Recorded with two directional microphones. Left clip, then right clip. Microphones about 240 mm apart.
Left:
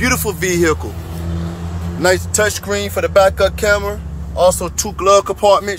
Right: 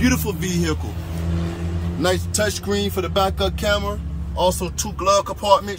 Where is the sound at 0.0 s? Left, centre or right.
Centre.